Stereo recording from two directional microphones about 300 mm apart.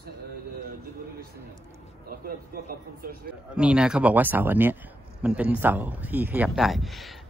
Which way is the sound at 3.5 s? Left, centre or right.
Centre.